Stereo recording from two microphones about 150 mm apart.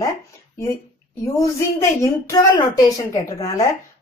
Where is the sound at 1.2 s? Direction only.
20° left (ahead or behind).